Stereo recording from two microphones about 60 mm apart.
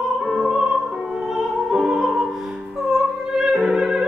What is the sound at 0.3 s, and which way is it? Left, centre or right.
Music, centre.